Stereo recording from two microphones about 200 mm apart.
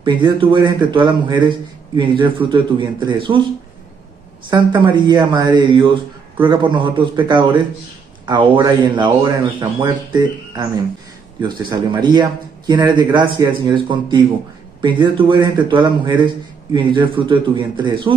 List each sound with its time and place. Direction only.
0.0 s speech: 25° right (ahead or behind)
4.8 s speech: 20° right (ahead or behind)